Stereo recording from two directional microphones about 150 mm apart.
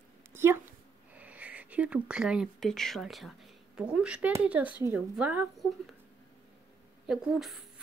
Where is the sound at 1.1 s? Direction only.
10° right (ahead or behind).